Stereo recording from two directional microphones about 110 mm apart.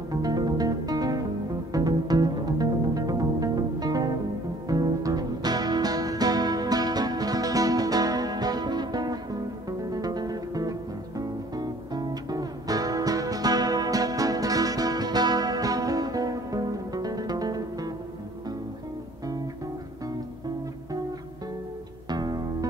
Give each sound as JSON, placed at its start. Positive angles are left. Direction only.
{"t": 0.1, "sound": "music", "side_deg": -35}
{"t": 22.1, "sound": "music", "side_deg": -40}